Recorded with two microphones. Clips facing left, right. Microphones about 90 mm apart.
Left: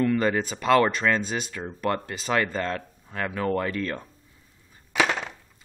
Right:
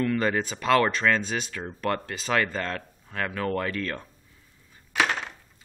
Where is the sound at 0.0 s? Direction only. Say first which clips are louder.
Left 2 dB; 25° left (ahead or behind).